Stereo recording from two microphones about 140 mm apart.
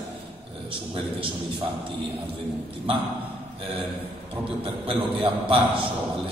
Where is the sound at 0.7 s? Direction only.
40° right (ahead or behind).